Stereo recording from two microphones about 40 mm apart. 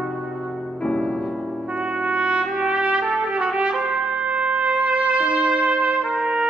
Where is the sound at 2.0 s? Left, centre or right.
Right.